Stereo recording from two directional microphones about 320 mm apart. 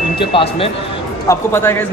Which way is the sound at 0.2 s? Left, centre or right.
Centre.